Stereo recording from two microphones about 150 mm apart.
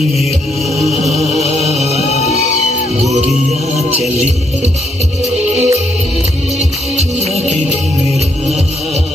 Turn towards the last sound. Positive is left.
turn(degrees=-45)  # may be behind; listen again after turning